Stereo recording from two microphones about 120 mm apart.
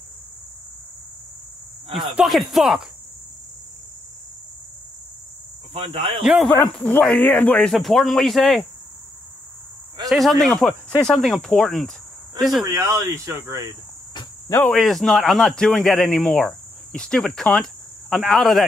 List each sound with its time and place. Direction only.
2.0 s speech: centre (ahead or behind)
5.7 s speech: 55° right (ahead or behind)
6.2 s speech: 5° right (ahead or behind)
6.7 s speech: 10° left (ahead or behind)
10.0 s speech: centre (ahead or behind)
12.6 s speech: 25° right (ahead or behind)
14.7 s speech: centre (ahead or behind)
16.4 s cricket: 5° left (ahead or behind)
18.1 s speech: centre (ahead or behind)